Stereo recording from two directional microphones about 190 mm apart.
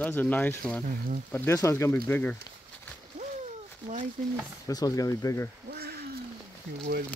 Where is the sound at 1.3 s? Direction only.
15° left (ahead or behind).